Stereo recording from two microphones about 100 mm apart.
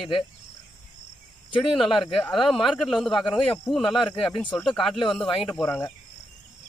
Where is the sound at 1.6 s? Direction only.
Centre (ahead or behind).